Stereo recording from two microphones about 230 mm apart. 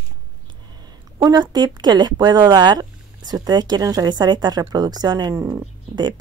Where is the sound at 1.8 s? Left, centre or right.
Centre.